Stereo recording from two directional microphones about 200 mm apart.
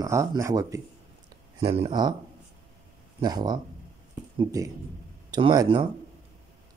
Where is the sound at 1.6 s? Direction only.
25° right (ahead or behind).